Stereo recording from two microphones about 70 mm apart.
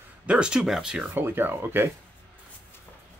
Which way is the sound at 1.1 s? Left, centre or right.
Right.